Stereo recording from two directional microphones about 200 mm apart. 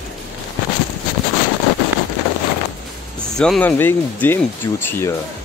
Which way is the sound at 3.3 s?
5° left (ahead or behind).